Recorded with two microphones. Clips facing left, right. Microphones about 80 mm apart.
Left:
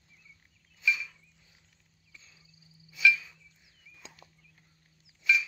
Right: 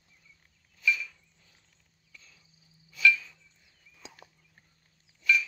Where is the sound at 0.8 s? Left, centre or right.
Centre.